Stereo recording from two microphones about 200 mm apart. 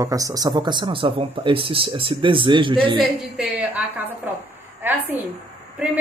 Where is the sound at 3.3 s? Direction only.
5° right (ahead or behind).